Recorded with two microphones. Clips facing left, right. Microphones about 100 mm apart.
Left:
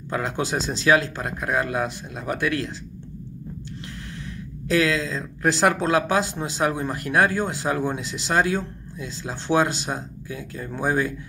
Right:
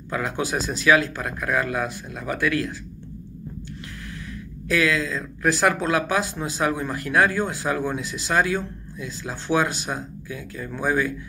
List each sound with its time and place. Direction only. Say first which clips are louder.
0.1 s speech: even; 30° left (ahead or behind)
4.6 s speech: left 1 dB; 30° left (ahead or behind)